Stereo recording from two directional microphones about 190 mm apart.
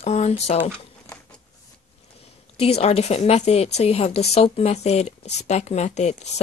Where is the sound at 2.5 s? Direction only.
35° left (ahead or behind).